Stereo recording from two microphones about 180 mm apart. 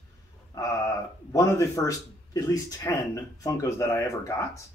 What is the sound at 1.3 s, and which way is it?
Speech, 15° left (ahead or behind).